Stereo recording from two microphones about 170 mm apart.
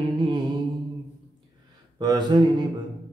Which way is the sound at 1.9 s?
25° right (ahead or behind).